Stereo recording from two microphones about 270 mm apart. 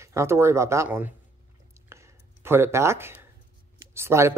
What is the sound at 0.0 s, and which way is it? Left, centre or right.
Speech, centre.